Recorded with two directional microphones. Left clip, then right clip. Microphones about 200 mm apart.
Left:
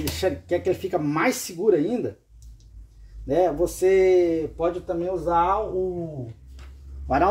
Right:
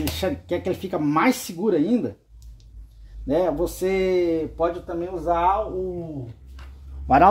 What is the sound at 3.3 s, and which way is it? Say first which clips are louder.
Speech: left 1 dB; 35° right (ahead or behind).